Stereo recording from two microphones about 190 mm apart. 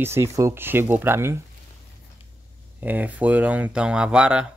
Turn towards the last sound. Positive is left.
turn(degrees=-5)  # may be behind; listen again after turning